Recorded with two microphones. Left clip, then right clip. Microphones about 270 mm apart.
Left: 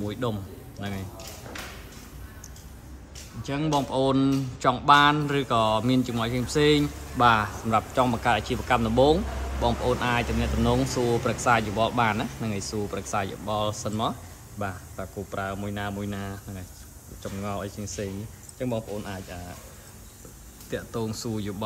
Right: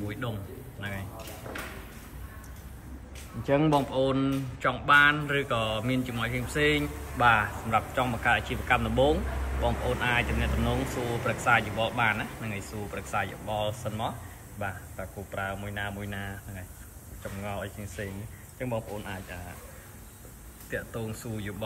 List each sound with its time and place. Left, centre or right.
0.1 s a man's voice: centre
3.4 s speech: centre
20.7 s speech: centre